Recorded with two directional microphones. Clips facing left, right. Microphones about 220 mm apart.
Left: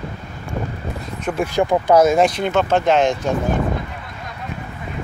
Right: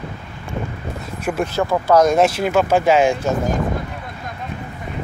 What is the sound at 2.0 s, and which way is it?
Speech, centre (ahead or behind).